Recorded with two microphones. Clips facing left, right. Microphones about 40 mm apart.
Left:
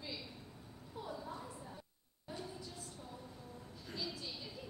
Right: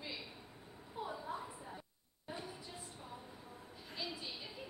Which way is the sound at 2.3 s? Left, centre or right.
Right.